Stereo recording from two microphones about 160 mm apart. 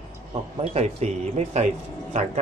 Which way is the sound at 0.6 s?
40° right (ahead or behind).